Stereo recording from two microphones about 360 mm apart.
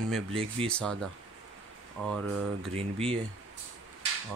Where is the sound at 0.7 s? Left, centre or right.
Centre.